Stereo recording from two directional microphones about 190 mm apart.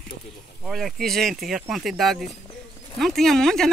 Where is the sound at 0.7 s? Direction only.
Centre (ahead or behind).